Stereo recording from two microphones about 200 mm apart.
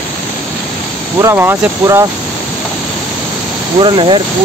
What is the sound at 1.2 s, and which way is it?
Speech, 10° right (ahead or behind).